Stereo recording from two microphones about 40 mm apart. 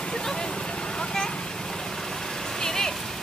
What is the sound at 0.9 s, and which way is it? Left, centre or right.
Vehicle, centre.